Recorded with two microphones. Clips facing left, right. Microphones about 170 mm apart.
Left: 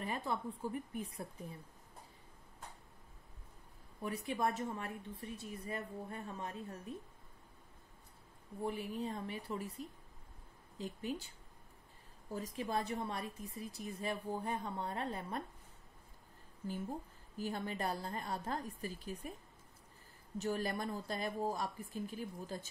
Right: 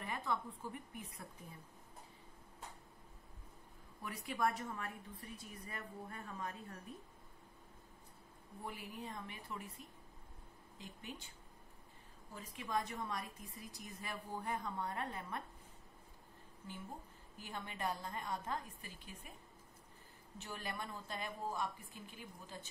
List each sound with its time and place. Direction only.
0.0 s a woman's voice: 30° left (ahead or behind)
4.0 s a woman's voice: 25° left (ahead or behind)
8.6 s a woman's voice: 30° left (ahead or behind)
12.3 s a woman's voice: 40° left (ahead or behind)
17.4 s a woman's voice: 35° left (ahead or behind)
20.3 s a woman's voice: 40° left (ahead or behind)